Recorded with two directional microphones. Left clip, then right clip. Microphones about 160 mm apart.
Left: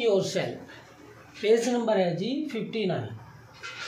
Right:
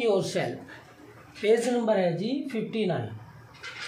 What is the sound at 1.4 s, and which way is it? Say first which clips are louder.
Speech: even; 10° right (ahead or behind).